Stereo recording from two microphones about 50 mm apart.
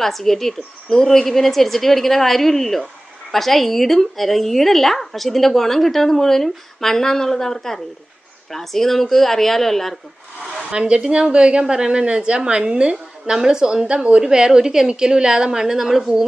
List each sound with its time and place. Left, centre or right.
0.0 s a woman's voice: centre
10.7 s a woman's voice: centre